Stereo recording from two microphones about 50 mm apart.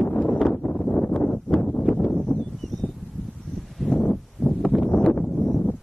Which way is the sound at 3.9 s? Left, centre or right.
Centre.